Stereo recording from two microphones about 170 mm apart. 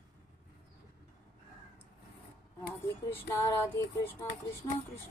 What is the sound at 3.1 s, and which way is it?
Speech, 15° left (ahead or behind).